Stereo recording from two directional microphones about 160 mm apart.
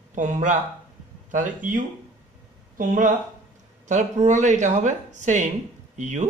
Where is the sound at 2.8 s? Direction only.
55° right (ahead or behind).